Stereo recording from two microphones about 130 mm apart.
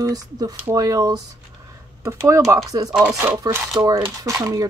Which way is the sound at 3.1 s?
15° right (ahead or behind).